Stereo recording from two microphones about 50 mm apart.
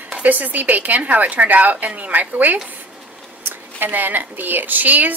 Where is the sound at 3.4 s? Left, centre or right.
Right.